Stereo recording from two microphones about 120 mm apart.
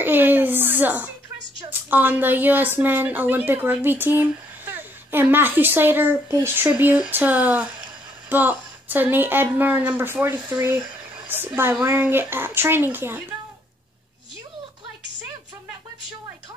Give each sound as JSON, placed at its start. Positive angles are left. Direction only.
{"t": 0.0, "sound": "a woman's voice", "side_deg": -15}